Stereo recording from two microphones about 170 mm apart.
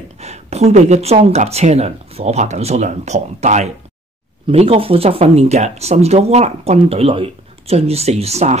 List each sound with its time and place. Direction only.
0.2 s speech: 40° right (ahead or behind)